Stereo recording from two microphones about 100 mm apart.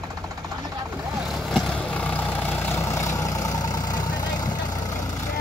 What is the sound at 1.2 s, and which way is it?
Vehicle, centre (ahead or behind).